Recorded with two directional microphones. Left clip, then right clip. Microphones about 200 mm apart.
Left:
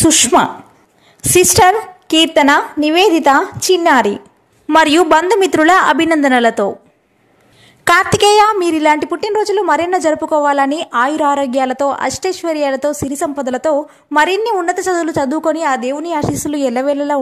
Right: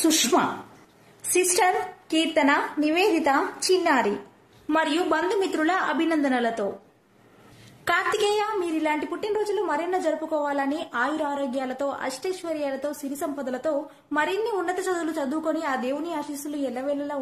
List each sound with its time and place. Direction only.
0.2 s a woman's voice: 35° left (ahead or behind)
7.8 s a woman's voice: 50° left (ahead or behind)